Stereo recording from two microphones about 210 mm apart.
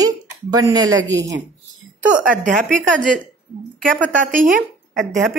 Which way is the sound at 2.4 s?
40° right (ahead or behind).